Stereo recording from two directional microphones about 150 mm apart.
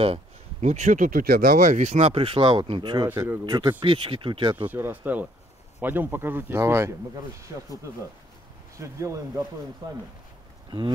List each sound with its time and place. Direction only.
0.0 s speech: 45° right (ahead or behind)
4.6 s speech: 15° right (ahead or behind)
8.7 s speech: 20° right (ahead or behind)